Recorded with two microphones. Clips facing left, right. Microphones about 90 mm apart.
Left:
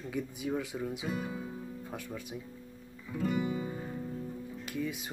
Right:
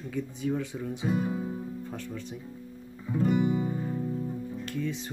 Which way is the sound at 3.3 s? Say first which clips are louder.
Right 6 dB; 20° right (ahead or behind).